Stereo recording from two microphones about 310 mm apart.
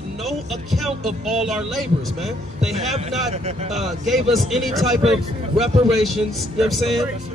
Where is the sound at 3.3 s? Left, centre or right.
Right.